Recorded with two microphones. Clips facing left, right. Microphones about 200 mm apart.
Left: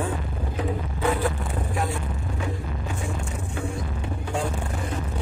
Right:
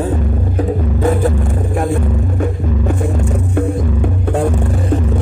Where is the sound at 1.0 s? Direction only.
45° right (ahead or behind).